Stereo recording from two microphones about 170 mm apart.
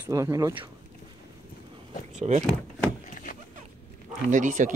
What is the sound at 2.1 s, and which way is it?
Speech, 45° right (ahead or behind).